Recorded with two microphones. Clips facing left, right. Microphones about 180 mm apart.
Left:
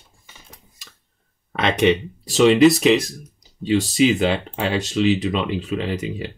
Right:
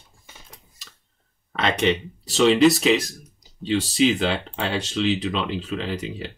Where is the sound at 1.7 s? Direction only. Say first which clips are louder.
Left 4 dB; centre (ahead or behind).